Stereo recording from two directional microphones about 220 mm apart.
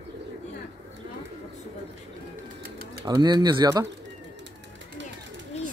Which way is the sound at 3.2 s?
20° right (ahead or behind).